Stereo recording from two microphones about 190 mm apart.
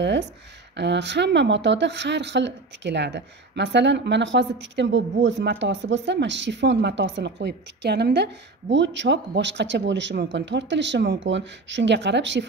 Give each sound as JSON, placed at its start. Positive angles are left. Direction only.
{"t": 0.7, "sound": "speech", "side_deg": -65}